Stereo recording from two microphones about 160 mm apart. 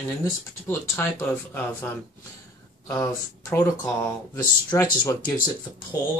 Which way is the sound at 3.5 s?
20° left (ahead or behind).